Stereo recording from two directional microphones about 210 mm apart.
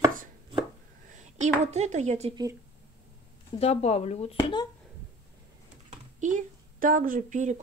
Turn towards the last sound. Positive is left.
turn(degrees=-35)  # may be behind; listen again after turning